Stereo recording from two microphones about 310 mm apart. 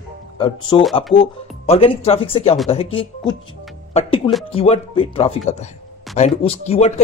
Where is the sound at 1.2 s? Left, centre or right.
Centre.